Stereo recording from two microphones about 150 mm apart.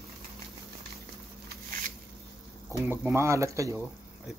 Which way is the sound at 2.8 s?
15° right (ahead or behind).